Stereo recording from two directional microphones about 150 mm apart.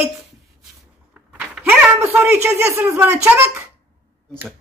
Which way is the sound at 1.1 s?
10° right (ahead or behind).